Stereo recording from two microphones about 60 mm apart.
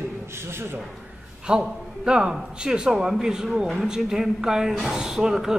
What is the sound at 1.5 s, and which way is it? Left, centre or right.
Speech, centre.